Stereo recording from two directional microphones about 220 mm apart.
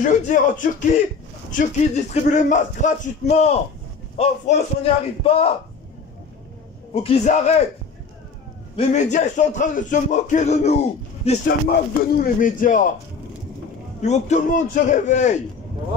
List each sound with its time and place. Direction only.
0.0 s a man's voice: 35° left (ahead or behind)
6.9 s a man's voice: 25° left (ahead or behind)
8.7 s a man's voice: 35° left (ahead or behind)
12.0 s a man's voice: 40° left (ahead or behind)
14.0 s a man's voice: 30° left (ahead or behind)